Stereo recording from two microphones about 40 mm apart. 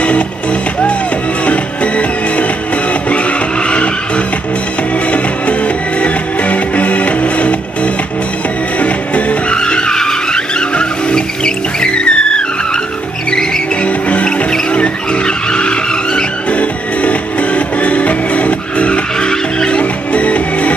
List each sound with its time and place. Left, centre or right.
1.4 s music: left
5.1 s music: left
9.6 s vehicle: left
13.8 s music: left
14.5 s vehicle: left
16.5 s music: left
19.8 s music: left